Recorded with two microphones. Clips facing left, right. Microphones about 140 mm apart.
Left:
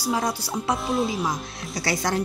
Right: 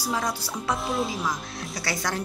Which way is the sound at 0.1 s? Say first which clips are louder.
Left 4 dB; 20° left (ahead or behind).